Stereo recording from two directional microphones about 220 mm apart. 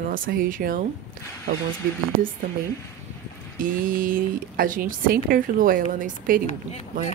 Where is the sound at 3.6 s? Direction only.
40° right (ahead or behind).